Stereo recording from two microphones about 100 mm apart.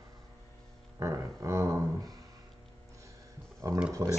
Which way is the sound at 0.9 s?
30° right (ahead or behind).